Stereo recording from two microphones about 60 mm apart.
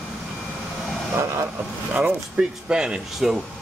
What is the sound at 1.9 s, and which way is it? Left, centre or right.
Speech, centre.